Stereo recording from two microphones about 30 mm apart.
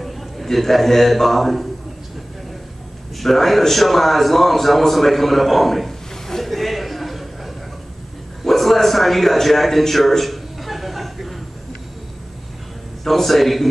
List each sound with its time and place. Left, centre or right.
0.5 s a man's voice: centre
3.2 s a man's voice: centre
8.5 s a sound: centre
13.0 s a man's voice: centre